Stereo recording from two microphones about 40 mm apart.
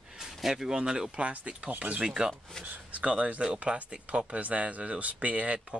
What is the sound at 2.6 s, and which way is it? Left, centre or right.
Speech, right.